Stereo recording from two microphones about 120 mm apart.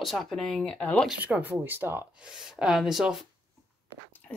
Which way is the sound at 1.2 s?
15° right (ahead or behind).